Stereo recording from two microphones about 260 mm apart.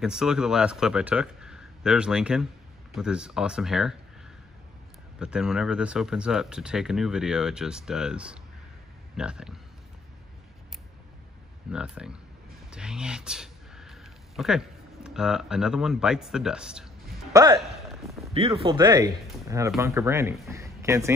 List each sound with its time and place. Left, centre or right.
0.0 s speech: centre
5.2 s speech: centre
11.7 s speech: centre
12.7 s a sound: centre
18.3 s a man's voice: right